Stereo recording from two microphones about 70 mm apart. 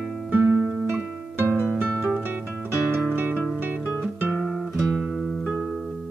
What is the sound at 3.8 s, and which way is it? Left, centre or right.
Guitar, centre.